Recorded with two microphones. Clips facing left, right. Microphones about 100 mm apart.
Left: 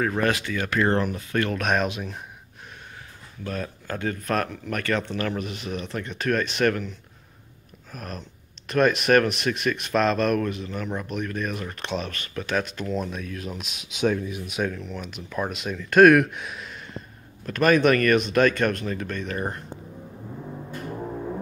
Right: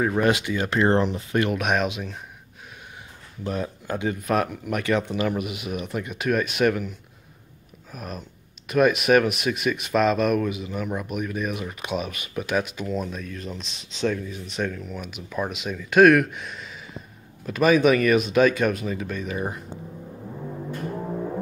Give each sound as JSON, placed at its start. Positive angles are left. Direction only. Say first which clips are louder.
{"t": 0.0, "sound": "speech", "louder": "right 2 dB", "side_deg": -15}
{"t": 3.4, "sound": "speech", "louder": "right 3 dB", "side_deg": -20}